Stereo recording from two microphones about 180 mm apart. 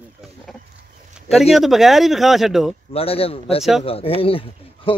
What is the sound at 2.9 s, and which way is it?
Speech, 35° left (ahead or behind).